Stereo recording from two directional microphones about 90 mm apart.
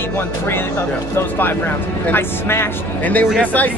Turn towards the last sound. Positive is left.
turn(degrees=20)  # may be behind; listen again after turning